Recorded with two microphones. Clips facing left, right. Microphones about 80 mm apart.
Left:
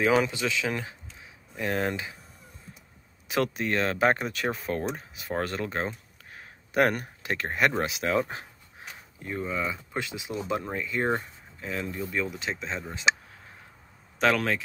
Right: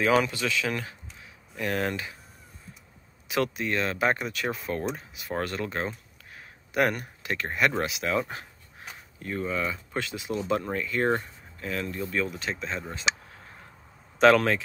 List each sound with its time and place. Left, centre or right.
0.2 s speech: left
3.3 s speech: left
6.3 s a sound: left
7.8 s speech: left
9.2 s speech: centre
14.2 s speech: centre